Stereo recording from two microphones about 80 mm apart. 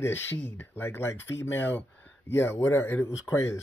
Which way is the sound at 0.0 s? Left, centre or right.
Left.